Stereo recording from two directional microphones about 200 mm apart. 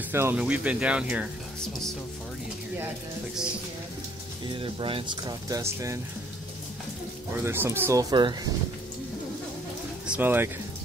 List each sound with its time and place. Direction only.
0.1 s speech: 10° right (ahead or behind)
4.5 s speech: 25° right (ahead or behind)
7.4 s speech: 10° right (ahead or behind)
10.0 s speech: 10° right (ahead or behind)